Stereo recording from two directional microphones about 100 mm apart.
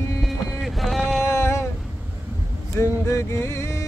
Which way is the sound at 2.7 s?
30° left (ahead or behind).